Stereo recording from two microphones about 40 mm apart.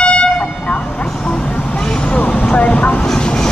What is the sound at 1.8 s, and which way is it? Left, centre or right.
Vehicle, centre.